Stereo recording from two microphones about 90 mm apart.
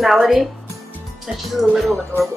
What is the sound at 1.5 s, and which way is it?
Speech, centre (ahead or behind).